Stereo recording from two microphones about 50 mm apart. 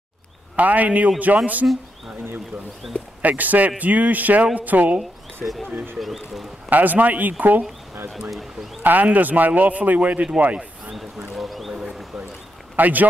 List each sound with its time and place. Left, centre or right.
0.6 s speech: right
2.8 s speech: centre
3.2 s speech: right
5.9 s speech: centre
6.7 s speech: right
8.8 s speech: right
11.3 s a sound: centre
12.7 s speech: right